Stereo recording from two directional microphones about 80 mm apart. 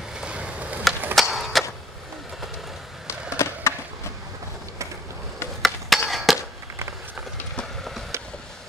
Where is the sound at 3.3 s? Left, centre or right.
Left.